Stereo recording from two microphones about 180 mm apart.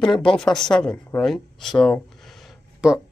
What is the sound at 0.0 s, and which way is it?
Speech, 5° left (ahead or behind).